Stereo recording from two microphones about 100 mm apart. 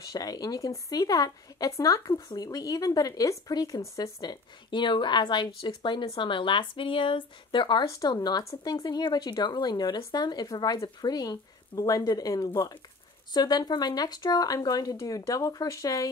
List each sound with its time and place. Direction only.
0.0 s speech: 40° left (ahead or behind)